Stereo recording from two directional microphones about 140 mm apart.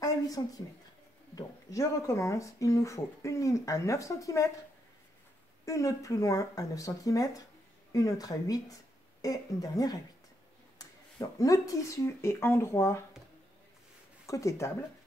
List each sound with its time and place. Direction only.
0.0 s a sound: 25° left (ahead or behind)
1.3 s speech: 25° left (ahead or behind)
5.7 s speech: 25° left (ahead or behind)
14.2 s speech: 20° left (ahead or behind)